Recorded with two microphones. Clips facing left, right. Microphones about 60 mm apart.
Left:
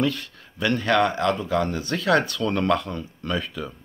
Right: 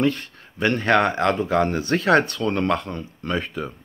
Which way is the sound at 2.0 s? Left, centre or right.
Right.